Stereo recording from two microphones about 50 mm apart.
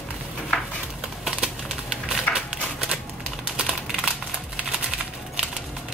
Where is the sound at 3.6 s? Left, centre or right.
Centre.